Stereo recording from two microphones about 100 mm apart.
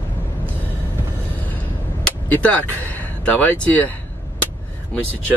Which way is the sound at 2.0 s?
10° left (ahead or behind).